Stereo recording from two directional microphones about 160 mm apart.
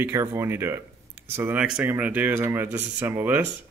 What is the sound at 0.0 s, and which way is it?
Speech, 15° right (ahead or behind).